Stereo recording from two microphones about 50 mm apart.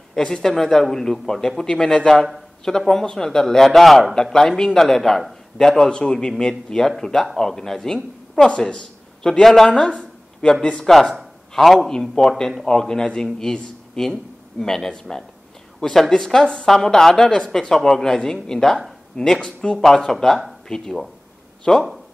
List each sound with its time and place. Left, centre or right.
0.1 s speech: centre
8.5 s speech: left
9.7 s speech: centre
10.9 s a man's voice: centre